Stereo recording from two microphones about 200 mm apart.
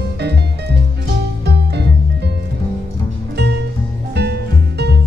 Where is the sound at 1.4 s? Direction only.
55° right (ahead or behind).